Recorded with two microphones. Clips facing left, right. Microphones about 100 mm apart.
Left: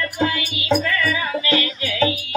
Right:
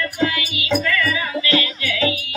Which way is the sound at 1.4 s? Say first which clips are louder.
Even; 30° left (ahead or behind).